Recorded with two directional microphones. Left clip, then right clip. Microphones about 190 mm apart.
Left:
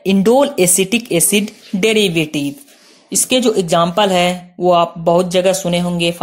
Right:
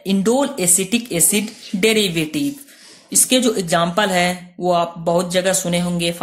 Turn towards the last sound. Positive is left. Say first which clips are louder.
# left 4 dB
turn(degrees=20)  # may be behind; listen again after turning